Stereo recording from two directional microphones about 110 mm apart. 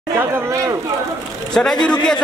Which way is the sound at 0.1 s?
30° right (ahead or behind).